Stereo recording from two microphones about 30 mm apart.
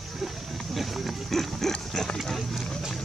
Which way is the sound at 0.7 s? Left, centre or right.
Centre.